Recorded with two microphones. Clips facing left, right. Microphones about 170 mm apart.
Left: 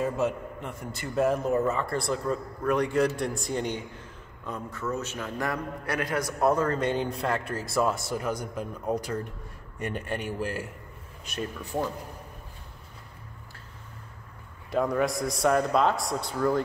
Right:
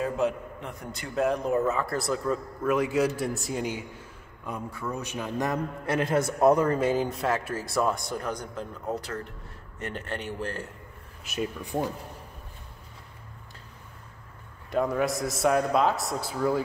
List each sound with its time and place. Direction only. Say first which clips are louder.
0.0 s a man's voice: even; centre (ahead or behind); by 6.8 s 15° right (ahead or behind)
6.8 s a man's voice: right 2 dB; 5° right (ahead or behind)
14.7 s a man's voice: even; centre (ahead or behind)